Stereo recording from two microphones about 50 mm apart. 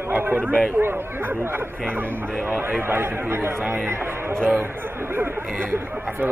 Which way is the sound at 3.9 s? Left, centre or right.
Right.